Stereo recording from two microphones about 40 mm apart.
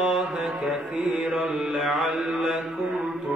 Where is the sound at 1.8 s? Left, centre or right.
Centre.